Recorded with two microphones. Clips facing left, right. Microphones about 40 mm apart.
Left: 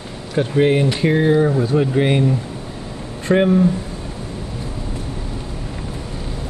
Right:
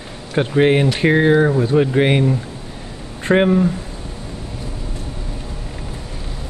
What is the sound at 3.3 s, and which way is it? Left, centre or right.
Speech, right.